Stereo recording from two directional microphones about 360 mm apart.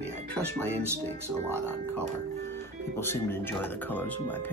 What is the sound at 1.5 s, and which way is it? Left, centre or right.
Speech, centre.